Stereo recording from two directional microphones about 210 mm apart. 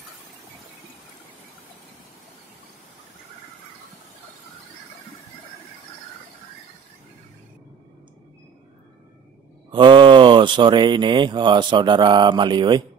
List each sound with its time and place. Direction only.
9.7 s speech: 20° right (ahead or behind)